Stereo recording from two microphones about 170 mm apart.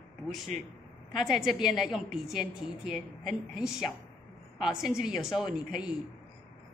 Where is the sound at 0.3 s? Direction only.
Centre (ahead or behind).